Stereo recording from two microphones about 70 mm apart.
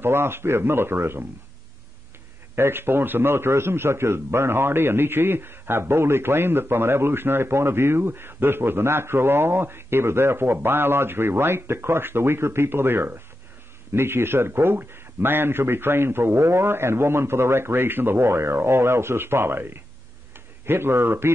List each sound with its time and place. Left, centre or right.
0.0 s a man's voice: right
2.5 s a man's voice: right